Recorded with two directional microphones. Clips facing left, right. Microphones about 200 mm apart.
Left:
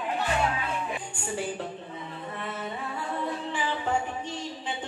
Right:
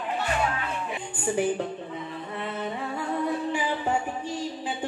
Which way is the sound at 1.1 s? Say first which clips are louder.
Right 6 dB; 20° right (ahead or behind).